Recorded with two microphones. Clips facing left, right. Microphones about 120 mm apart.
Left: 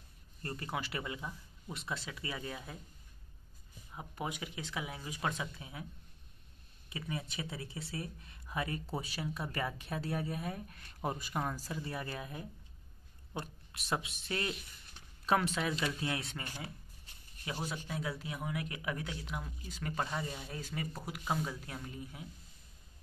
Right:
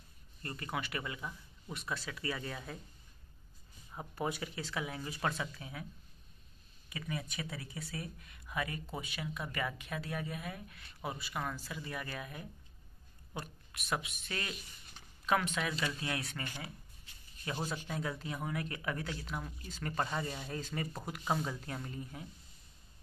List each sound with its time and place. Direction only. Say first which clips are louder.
0.4 s speech: left 1 dB; 30° left (ahead or behind); by 2.8 s 15° left (ahead or behind)
4.1 s speech: right 3 dB; 15° left (ahead or behind)
6.9 s a woman's voice: even; 25° left (ahead or behind)
17.5 s speech: right 1 dB; 5° left (ahead or behind)